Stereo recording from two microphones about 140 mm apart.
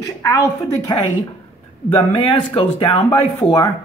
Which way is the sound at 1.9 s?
40° left (ahead or behind).